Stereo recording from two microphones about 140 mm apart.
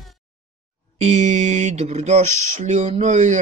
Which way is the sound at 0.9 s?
55° right (ahead or behind).